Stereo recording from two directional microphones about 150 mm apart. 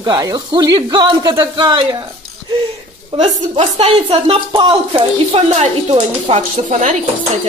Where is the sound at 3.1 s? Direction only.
45° right (ahead or behind).